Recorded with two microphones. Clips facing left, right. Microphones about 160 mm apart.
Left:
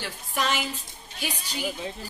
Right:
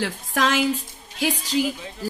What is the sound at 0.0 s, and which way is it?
A woman's voice, 90° right.